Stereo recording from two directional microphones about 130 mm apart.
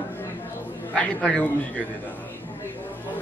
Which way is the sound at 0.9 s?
5° left (ahead or behind).